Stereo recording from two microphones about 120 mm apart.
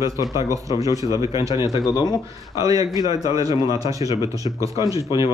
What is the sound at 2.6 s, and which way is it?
A man's voice, 30° right (ahead or behind).